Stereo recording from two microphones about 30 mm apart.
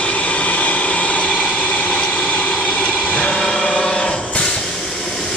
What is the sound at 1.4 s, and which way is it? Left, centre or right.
Vehicle, left.